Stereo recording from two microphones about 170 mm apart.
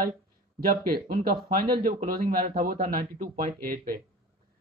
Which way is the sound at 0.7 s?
60° right (ahead or behind).